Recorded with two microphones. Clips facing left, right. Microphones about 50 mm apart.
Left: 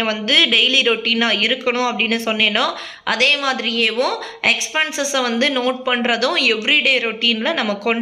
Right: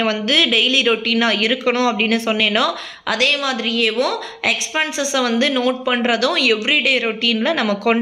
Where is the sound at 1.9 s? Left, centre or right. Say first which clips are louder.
Right 1 dB; left.